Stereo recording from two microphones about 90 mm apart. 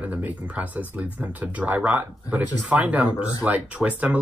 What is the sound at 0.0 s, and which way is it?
Speech, 15° right (ahead or behind).